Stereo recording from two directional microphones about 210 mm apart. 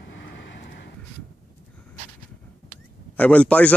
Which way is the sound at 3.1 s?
5° left (ahead or behind).